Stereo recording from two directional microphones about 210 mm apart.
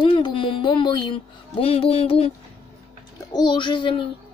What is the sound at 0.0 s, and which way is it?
Speech, 25° left (ahead or behind).